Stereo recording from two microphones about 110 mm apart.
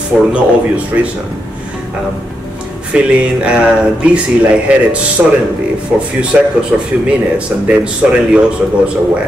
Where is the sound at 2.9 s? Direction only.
10° right (ahead or behind).